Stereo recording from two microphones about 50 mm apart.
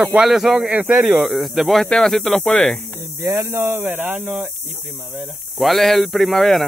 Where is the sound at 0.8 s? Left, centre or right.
Centre.